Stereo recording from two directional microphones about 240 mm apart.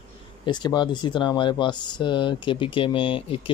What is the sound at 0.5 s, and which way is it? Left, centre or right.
Speech, centre.